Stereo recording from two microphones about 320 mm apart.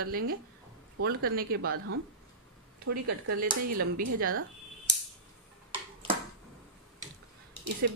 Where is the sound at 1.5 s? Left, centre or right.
Right.